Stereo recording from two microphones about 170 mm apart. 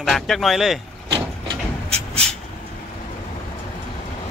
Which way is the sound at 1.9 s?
35° right (ahead or behind).